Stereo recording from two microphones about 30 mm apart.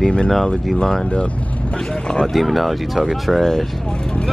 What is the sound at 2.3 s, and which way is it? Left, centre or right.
Speech, centre.